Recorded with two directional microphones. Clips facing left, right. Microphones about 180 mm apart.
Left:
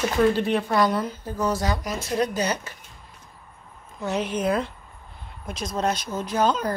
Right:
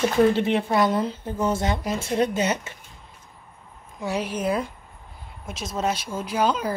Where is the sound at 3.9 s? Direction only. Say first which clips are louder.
Left 1 dB; 10° right (ahead or behind).